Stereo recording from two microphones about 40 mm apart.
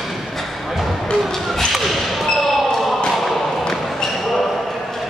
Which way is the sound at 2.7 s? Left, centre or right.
Centre.